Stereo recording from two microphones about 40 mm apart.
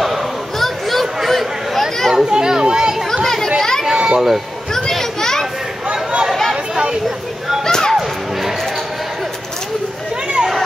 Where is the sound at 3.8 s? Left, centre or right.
Centre.